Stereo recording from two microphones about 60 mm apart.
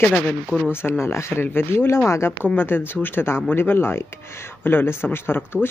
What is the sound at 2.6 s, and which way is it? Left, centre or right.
Speech, left.